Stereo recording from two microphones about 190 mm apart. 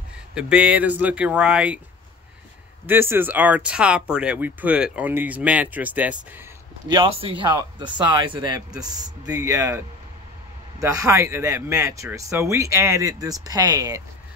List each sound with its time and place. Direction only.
0.3 s speech: 5° right (ahead or behind)
2.9 s speech: 10° right (ahead or behind)
6.9 s speech: 25° right (ahead or behind)